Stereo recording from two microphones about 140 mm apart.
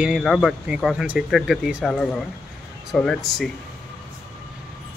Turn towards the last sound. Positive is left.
turn(degrees=5)  # may be behind; listen again after turning